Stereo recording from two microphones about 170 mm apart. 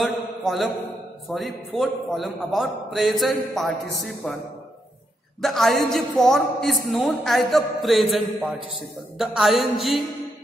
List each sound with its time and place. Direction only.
0.0 s a man's voice: centre (ahead or behind)
5.4 s a man's voice: centre (ahead or behind)